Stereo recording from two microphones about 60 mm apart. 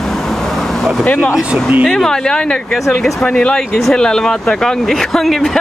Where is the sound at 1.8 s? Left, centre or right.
Centre.